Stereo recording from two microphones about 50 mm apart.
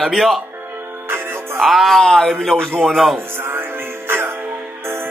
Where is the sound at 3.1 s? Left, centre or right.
Right.